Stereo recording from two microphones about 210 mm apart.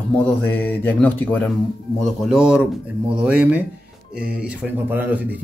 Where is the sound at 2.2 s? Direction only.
5° right (ahead or behind).